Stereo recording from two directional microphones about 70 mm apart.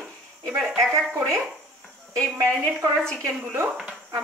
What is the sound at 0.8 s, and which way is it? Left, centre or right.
Speech, right.